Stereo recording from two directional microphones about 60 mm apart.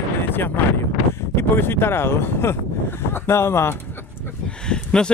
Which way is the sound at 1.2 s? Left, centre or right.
Left.